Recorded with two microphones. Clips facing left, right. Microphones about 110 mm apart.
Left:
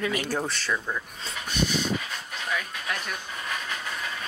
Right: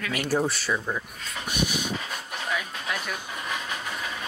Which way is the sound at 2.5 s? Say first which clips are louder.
Even; 5° right (ahead or behind).